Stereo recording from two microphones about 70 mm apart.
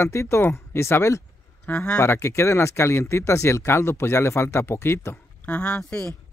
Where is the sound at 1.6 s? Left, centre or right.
Centre.